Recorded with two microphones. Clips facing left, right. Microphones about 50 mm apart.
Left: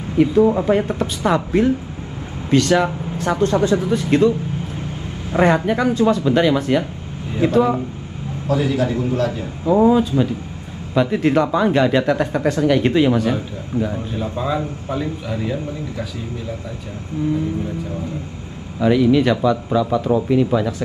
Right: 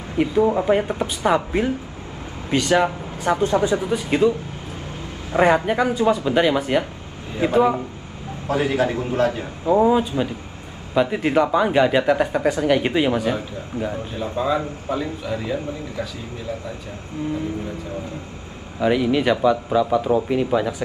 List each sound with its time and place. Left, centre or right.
0.2 s speech: centre
5.4 s speech: centre
8.5 s a man's voice: right
9.7 s speech: centre
14.4 s speech: centre
15.4 s speech: centre
18.8 s speech: centre